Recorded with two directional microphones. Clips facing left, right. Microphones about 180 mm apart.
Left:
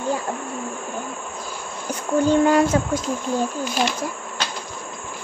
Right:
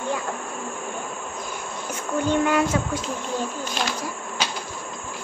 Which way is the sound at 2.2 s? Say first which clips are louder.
Left 4 dB; 35° left (ahead or behind).